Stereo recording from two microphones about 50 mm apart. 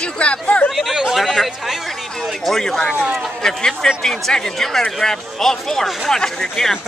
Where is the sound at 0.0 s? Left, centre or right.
Left.